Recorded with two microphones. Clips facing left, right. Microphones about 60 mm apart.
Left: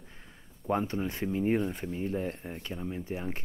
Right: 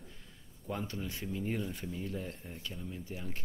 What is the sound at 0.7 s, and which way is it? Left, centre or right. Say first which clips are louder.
Speech: left 9 dB; left.